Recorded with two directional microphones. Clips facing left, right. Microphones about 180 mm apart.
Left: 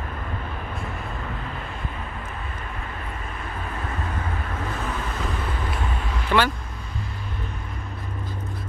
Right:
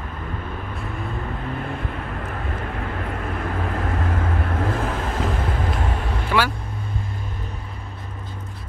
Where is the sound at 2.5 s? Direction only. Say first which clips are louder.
Right 6 dB; 60° right (ahead or behind).